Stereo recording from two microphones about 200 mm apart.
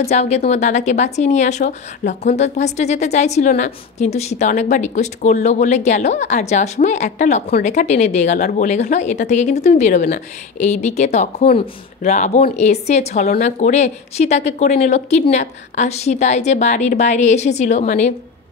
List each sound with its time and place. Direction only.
0.0 s speech: 35° left (ahead or behind)